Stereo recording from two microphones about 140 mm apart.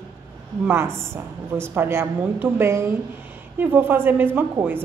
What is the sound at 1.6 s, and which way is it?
A woman's voice, 15° right (ahead or behind).